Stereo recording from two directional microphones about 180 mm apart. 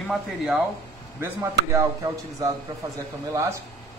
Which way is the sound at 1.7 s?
20° right (ahead or behind).